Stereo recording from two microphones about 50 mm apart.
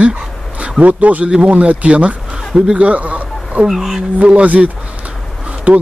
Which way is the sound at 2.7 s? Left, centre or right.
Right.